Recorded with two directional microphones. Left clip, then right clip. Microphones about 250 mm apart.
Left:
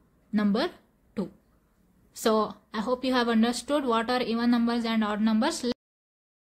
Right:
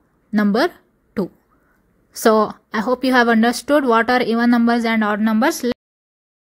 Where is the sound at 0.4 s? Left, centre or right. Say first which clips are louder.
Right 10 dB; right.